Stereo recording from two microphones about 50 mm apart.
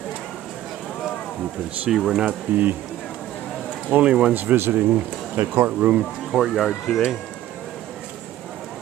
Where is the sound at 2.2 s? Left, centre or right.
Right.